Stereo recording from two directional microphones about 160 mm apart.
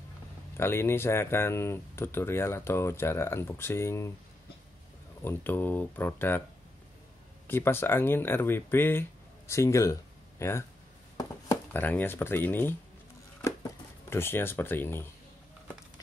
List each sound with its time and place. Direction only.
0.6 s speech: 15° left (ahead or behind)
5.2 s speech: 15° left (ahead or behind)
7.4 s speech: 15° left (ahead or behind)
11.7 s speech: 10° left (ahead or behind)
13.4 s a sound: 15° left (ahead or behind)